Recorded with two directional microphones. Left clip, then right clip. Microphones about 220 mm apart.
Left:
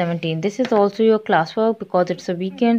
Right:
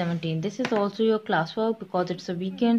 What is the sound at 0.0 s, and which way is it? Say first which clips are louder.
A woman's voice: left 8 dB; 30° left (ahead or behind).